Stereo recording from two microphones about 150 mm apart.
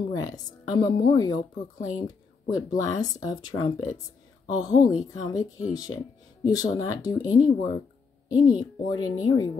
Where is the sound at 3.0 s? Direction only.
25° left (ahead or behind).